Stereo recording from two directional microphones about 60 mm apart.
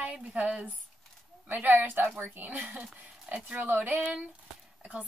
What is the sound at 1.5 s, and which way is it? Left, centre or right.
Speech, right.